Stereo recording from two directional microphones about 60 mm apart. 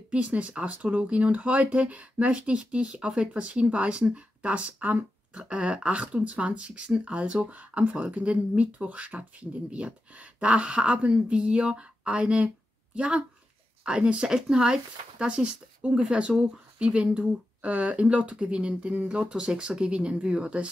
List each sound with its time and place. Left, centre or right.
0.1 s speech: right